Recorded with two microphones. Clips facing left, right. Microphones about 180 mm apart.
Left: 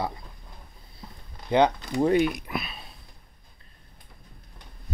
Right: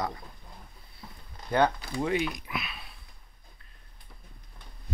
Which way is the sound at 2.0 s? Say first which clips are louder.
Left 8 dB; 50° left (ahead or behind).